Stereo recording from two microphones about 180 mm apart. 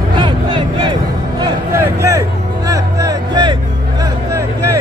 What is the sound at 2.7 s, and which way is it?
Music, 20° right (ahead or behind).